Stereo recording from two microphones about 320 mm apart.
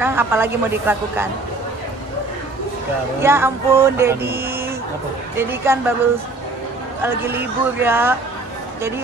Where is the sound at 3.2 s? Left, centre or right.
Centre.